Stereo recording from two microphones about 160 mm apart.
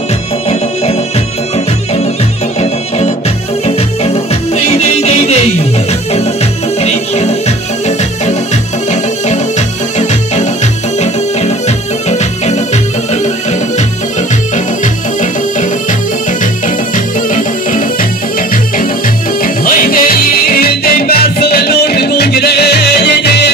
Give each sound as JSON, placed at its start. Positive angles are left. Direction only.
{"t": 3.6, "sound": "music", "side_deg": 40}
{"t": 6.8, "sound": "music", "side_deg": 45}
{"t": 8.9, "sound": "music", "side_deg": 45}
{"t": 16.6, "sound": "music", "side_deg": 55}
{"t": 19.4, "sound": "music", "side_deg": 65}